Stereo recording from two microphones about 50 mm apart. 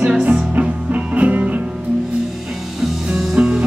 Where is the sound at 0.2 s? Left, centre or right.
Right.